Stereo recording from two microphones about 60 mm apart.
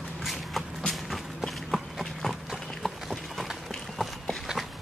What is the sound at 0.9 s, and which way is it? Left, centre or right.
Clip-clop, centre.